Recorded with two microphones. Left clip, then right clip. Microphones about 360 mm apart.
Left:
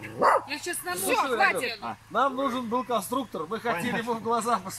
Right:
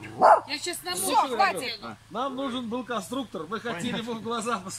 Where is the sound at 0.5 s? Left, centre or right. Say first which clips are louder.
Right 1 dB; centre.